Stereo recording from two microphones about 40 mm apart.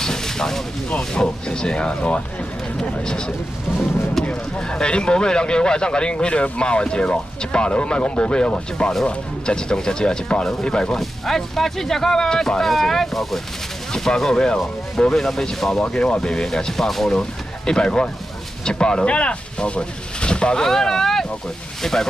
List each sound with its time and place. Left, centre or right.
0.0 s a sound: centre
0.8 s speech: left
10.9 s speech: centre
15.1 s speech: centre
17.2 s speech: centre
20.6 s speech: centre